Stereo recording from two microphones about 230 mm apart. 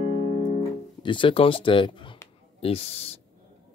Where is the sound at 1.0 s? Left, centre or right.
Left.